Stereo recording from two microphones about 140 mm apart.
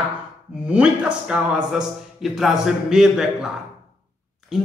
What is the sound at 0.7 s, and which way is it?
Speech, 5° right (ahead or behind).